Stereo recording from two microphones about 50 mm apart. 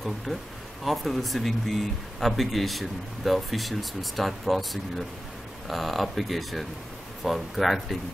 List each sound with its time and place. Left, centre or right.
0.3 s speech: centre